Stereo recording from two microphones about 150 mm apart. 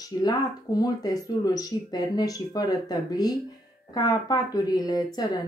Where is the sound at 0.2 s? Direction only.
25° left (ahead or behind).